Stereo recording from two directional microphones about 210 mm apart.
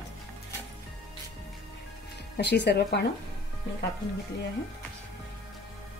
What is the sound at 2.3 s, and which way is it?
Speech, 55° left (ahead or behind).